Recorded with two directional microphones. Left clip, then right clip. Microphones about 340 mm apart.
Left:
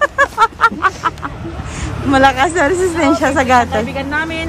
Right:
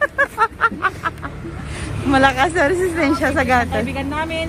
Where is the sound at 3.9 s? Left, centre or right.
Centre.